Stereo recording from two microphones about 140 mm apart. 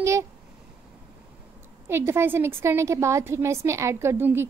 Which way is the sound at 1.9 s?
15° right (ahead or behind).